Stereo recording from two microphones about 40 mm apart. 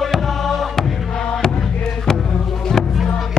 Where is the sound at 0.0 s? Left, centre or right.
Centre.